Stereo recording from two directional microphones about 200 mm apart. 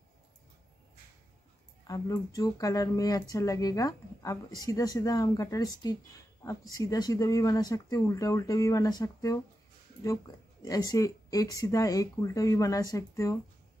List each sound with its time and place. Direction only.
1.9 s speech: 15° left (ahead or behind)
10.6 s speech: 15° left (ahead or behind)